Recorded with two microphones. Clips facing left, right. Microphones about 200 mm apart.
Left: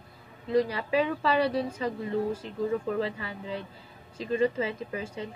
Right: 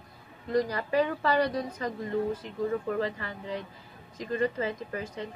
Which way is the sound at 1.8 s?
10° left (ahead or behind).